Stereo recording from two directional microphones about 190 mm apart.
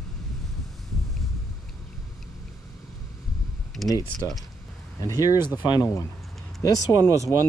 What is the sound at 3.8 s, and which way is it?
Computer keyboard, centre (ahead or behind).